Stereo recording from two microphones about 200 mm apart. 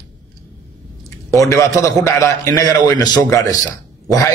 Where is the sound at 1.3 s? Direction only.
15° left (ahead or behind).